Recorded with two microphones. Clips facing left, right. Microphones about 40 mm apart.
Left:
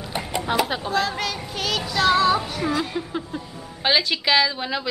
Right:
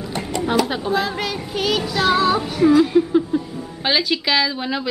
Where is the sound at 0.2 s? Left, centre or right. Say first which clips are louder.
Right 1 dB; centre.